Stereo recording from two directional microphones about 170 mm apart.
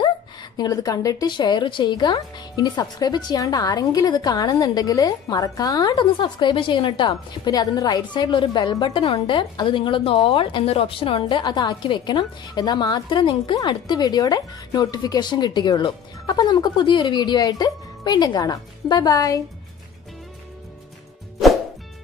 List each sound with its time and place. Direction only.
0.0 s a woman's voice: 25° left (ahead or behind)